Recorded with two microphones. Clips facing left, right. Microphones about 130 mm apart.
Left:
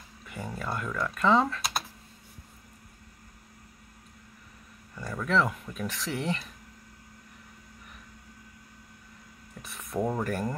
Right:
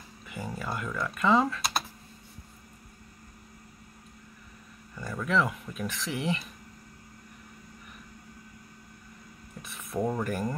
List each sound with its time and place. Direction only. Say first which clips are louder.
0.3 s speech: even; 5° right (ahead or behind)
4.9 s speech: left 1 dB; 5° right (ahead or behind)
9.8 s speech: even; 5° left (ahead or behind)